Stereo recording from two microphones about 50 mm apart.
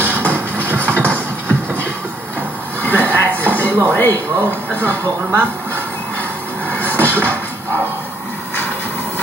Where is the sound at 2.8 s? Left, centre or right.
Left.